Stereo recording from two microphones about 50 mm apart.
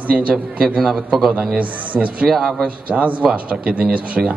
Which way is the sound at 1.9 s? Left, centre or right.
Right.